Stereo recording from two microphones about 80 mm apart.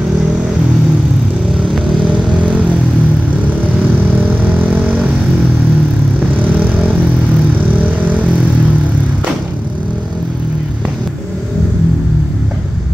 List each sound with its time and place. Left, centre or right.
2.0 s vehicle: centre